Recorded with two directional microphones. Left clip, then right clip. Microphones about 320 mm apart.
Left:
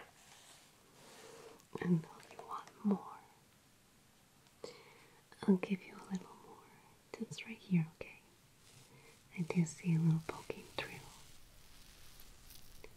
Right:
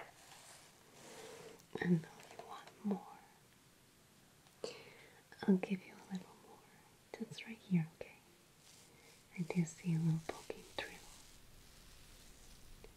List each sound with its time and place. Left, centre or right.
1.7 s whispering: centre
2.5 s whispering: centre
4.6 s whispering: centre
5.4 s whispering: centre
9.3 s whispering: centre